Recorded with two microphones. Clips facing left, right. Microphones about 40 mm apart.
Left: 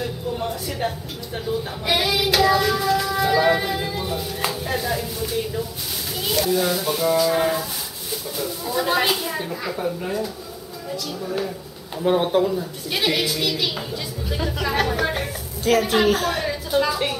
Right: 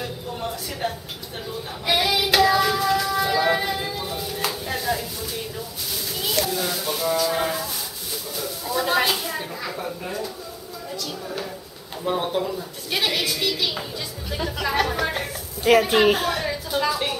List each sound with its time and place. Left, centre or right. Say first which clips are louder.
0.0 s a sound: left 4 dB; centre
1.9 s child singing: even; centre
3.9 s music: left 2 dB; centre
6.2 s speech: left 4 dB; centre
12.0 s speech: left 5 dB; centre
15.8 s a woman's voice: even; centre
16.3 s a woman's voice: left 1 dB; centre